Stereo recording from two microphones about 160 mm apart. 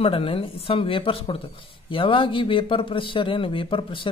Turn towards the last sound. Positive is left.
turn(degrees=30)  # may be behind; listen again after turning